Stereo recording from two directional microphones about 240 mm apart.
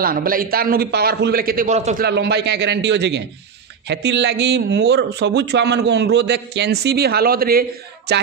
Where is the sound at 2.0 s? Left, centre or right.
Right.